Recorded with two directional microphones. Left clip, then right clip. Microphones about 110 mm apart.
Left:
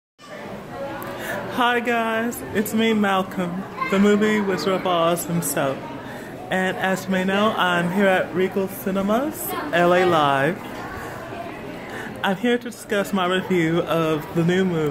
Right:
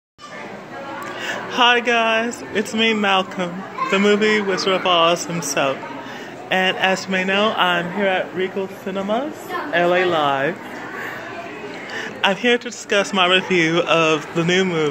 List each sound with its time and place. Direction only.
1.2 s speech: 5° left (ahead or behind)
8.0 s speech: 55° left (ahead or behind)
8.5 s speech: 35° left (ahead or behind)
12.2 s speech: 15° left (ahead or behind)